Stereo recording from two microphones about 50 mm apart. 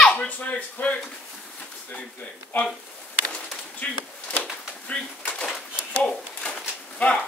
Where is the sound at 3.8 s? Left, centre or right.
Left.